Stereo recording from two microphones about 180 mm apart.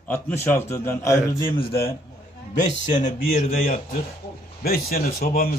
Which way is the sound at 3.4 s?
45° left (ahead or behind).